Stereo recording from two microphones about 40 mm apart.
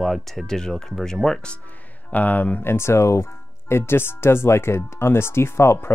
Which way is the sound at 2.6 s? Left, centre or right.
Left.